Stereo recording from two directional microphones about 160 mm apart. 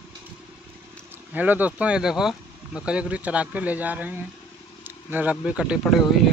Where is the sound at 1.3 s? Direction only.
10° right (ahead or behind).